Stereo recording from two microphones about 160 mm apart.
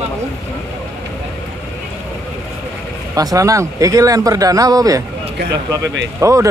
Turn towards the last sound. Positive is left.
turn(degrees=-20)  # may be behind; listen again after turning